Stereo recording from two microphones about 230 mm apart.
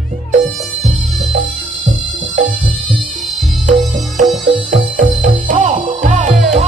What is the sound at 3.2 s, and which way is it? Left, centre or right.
Music, centre.